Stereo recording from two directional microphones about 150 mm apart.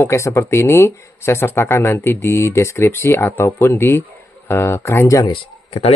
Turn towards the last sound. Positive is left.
turn(degrees=35)  # may be behind; listen again after turning